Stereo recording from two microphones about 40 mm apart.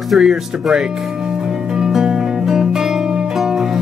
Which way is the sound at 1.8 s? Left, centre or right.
Centre.